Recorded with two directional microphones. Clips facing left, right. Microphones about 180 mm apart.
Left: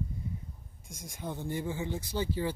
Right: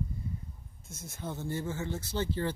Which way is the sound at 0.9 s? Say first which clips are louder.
Even; 15° left (ahead or behind).